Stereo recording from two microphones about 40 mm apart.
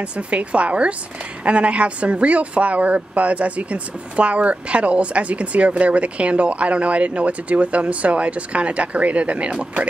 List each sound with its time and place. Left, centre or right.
0.3 s a woman's voice: right